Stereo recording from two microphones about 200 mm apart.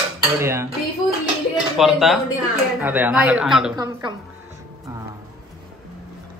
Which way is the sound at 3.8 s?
20° right (ahead or behind).